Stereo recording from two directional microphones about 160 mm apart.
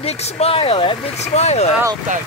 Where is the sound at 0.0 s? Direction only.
40° left (ahead or behind).